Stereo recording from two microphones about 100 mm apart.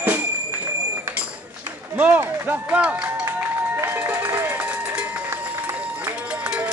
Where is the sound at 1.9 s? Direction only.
15° right (ahead or behind).